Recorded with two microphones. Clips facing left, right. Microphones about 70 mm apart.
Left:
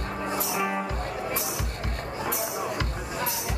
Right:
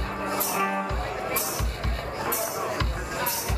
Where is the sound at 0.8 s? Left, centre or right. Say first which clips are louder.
Right 1 dB; right.